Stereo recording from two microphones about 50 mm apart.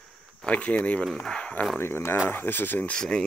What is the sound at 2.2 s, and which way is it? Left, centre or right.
Speech, left.